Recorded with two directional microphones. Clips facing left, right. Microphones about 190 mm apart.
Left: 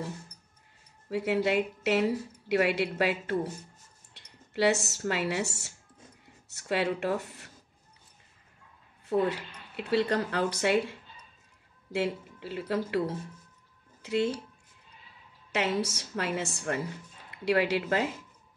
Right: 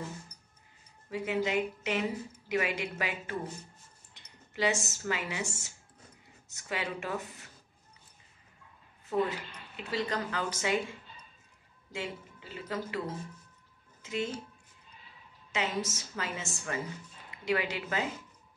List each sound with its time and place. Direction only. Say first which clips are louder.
1.1 s a woman's voice: left 4 dB; 65° left (ahead or behind)
9.3 s a woman's voice: left 2 dB; 65° left (ahead or behind)
14.0 s a woman's voice: left 6 dB; 70° left (ahead or behind)
15.5 s a woman's voice: left 4 dB; 65° left (ahead or behind)